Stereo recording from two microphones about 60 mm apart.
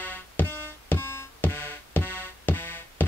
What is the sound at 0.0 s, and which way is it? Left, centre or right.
Music, left.